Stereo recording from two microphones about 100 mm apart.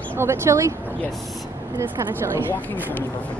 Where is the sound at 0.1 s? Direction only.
25° right (ahead or behind).